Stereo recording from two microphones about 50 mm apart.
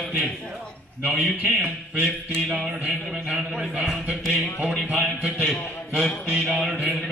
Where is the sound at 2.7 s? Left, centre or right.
Right.